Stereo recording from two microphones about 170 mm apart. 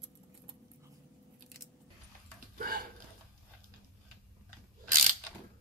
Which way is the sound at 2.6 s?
60° right (ahead or behind).